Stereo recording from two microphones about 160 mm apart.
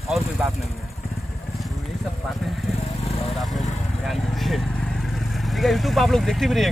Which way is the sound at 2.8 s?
40° left (ahead or behind).